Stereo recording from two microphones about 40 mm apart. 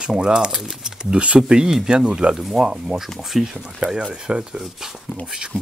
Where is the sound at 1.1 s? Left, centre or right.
Right.